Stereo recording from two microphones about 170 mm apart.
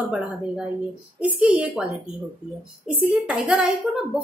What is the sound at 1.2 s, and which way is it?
Speech, 10° right (ahead or behind).